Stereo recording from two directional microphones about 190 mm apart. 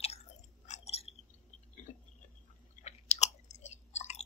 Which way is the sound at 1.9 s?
35° left (ahead or behind).